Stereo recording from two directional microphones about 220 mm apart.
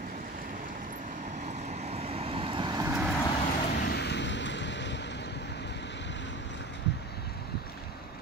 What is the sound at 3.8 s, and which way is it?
Vehicle, 50° left (ahead or behind).